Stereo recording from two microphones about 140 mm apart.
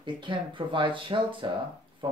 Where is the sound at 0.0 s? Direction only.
35° right (ahead or behind).